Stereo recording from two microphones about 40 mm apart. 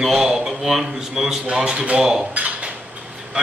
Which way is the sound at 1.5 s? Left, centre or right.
Right.